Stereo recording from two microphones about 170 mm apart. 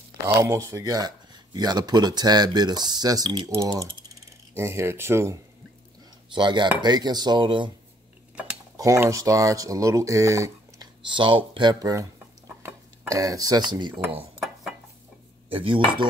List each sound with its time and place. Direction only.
0.3 s speech: 20° right (ahead or behind)
6.3 s speech: 25° right (ahead or behind)
8.7 s speech: 20° right (ahead or behind)
15.5 s cutlery: 30° right (ahead or behind)